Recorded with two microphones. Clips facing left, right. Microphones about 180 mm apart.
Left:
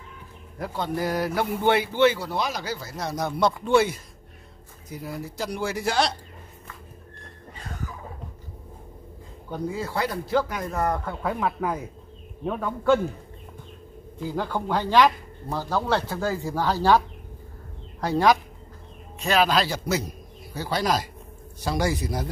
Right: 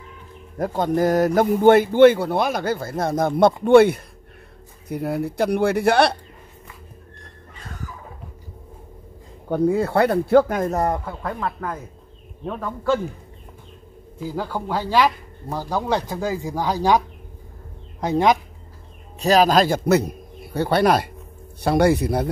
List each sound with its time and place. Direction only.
0.6 s speech: 45° right (ahead or behind)
9.5 s speech: 60° right (ahead or behind)
11.2 s a man's voice: 5° left (ahead or behind)
14.1 s speech: 10° right (ahead or behind)
18.0 s speech: 20° right (ahead or behind)
19.1 s a man's voice: 40° right (ahead or behind); by 22.3 s 60° right (ahead or behind)